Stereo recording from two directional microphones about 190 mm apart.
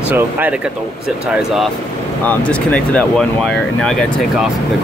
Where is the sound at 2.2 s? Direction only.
10° left (ahead or behind).